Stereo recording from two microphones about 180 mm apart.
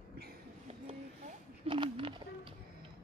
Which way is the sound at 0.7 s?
35° right (ahead or behind).